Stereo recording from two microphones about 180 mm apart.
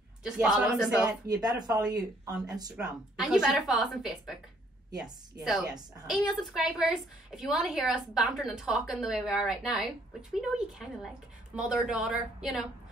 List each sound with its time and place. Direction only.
0.2 s a woman's voice: 5° right (ahead or behind)
1.2 s speech: 20° right (ahead or behind)
3.2 s a woman's voice: 5° right (ahead or behind)
5.4 s a woman's voice: 5° right (ahead or behind)